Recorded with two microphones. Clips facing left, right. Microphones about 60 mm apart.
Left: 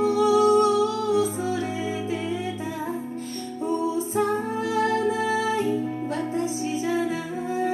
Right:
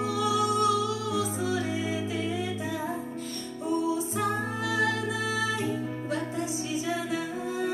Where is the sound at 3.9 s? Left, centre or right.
Left.